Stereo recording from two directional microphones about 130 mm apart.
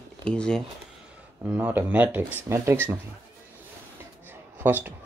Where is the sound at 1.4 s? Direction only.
15° right (ahead or behind).